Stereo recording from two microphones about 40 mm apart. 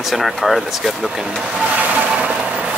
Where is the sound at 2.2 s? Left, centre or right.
Right.